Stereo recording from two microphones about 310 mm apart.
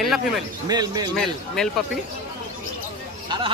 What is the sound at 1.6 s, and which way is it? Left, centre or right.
Speech, centre.